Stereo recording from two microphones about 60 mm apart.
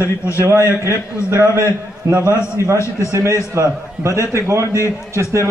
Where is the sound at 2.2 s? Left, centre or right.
Right.